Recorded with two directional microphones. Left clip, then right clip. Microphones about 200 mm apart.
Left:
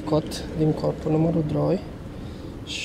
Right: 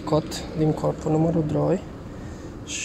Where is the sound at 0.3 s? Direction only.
10° left (ahead or behind).